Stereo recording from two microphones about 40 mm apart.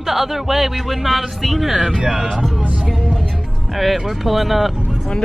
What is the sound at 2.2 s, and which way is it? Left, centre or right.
Speech, centre.